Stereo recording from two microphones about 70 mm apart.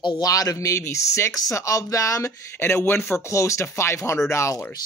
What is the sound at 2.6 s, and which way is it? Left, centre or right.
A woman's voice, left.